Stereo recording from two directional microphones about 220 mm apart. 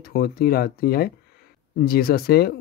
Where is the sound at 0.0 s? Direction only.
45° left (ahead or behind).